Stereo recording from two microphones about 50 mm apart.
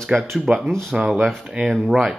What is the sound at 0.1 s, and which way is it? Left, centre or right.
Speech, right.